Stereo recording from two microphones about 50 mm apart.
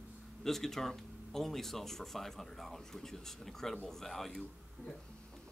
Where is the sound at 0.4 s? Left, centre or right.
Centre.